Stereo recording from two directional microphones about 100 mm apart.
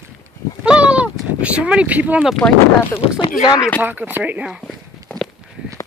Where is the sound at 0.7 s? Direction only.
10° right (ahead or behind).